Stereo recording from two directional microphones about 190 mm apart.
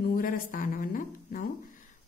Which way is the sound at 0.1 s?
45° left (ahead or behind).